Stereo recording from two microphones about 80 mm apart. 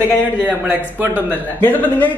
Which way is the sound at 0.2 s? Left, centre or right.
Right.